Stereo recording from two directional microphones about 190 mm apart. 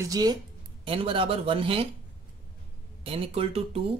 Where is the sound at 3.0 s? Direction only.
30° right (ahead or behind).